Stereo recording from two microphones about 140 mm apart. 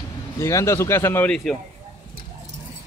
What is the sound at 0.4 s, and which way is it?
Speech, 20° left (ahead or behind).